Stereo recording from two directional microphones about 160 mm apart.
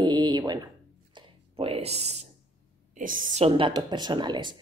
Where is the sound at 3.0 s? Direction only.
60° right (ahead or behind).